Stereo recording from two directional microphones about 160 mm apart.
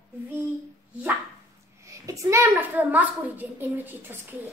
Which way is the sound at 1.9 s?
20° right (ahead or behind).